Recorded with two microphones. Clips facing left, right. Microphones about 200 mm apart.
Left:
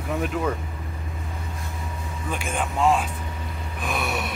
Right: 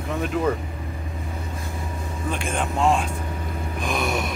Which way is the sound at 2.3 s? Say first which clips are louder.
Right 1 dB; 5° left (ahead or behind).